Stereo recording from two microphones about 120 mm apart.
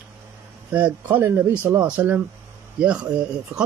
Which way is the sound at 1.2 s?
20° right (ahead or behind).